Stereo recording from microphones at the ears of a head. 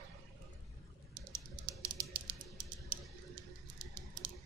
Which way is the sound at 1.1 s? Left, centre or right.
Right.